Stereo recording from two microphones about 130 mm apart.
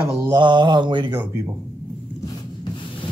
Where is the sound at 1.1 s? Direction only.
20° right (ahead or behind).